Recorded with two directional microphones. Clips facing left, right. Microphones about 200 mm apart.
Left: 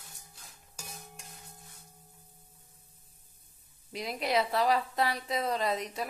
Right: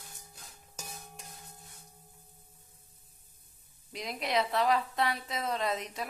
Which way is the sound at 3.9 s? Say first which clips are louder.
Left 2 dB; centre (ahead or behind).